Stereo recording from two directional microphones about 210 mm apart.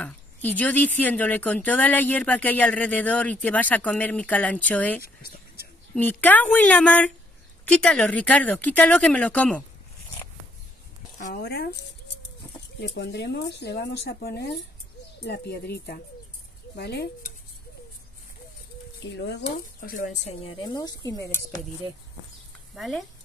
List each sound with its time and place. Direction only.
0.0 s speech: 10° left (ahead or behind)
5.0 s speech: 45° left (ahead or behind)
5.9 s speech: 10° left (ahead or behind)
11.1 s speech: 40° left (ahead or behind)
12.8 s speech: 55° left (ahead or behind)
19.0 s speech: 55° left (ahead or behind); by 21.5 s 15° left (ahead or behind)
22.8 s speech: centre (ahead or behind)